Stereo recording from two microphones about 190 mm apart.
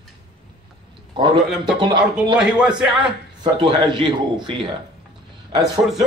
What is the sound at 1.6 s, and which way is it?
Speech, 25° right (ahead or behind).